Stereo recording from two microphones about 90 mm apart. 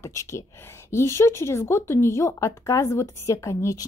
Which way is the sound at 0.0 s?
35° left (ahead or behind).